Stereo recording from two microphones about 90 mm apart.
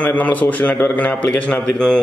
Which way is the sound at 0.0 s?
15° left (ahead or behind).